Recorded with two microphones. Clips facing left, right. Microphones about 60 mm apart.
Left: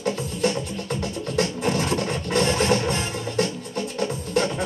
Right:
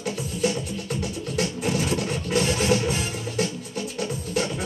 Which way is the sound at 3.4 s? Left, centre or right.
Left.